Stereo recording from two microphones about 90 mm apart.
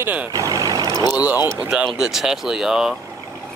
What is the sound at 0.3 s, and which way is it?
Vehicle, 40° right (ahead or behind).